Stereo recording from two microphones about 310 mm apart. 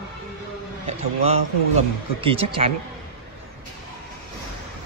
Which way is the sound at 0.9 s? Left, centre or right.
Centre.